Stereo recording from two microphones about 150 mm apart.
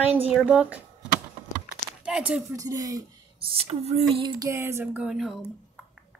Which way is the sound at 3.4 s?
40° right (ahead or behind).